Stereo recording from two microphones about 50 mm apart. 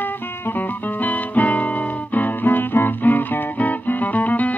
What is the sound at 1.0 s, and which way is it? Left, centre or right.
Music, left.